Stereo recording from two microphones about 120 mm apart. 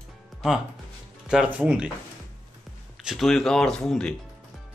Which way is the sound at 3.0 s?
5° right (ahead or behind).